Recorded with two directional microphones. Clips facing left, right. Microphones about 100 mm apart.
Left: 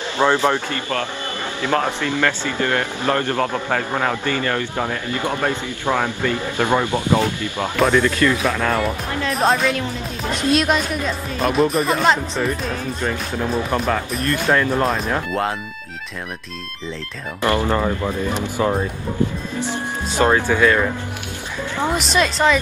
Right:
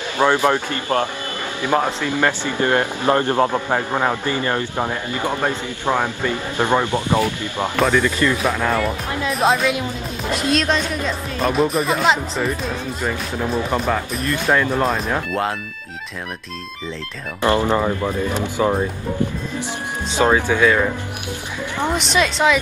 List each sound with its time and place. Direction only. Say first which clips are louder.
0.2 s speech: right 1 dB; 15° right (ahead or behind)
7.8 s speech: left 2 dB; centre (ahead or behind)
17.4 s speech: right 2 dB; 20° right (ahead or behind)
17.7 s speech: right 1 dB; 5° right (ahead or behind)
20.2 s speech: even; 10° right (ahead or behind)